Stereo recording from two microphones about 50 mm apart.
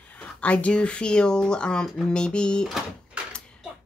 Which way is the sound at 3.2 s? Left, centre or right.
Right.